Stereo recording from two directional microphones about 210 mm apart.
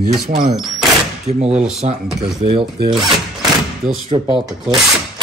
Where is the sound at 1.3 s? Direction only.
30° right (ahead or behind).